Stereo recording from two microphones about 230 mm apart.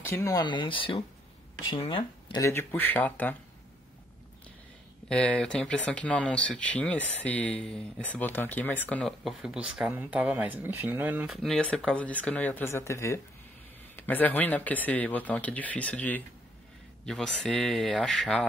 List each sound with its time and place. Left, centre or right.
0.1 s speech: centre
5.0 s speech: centre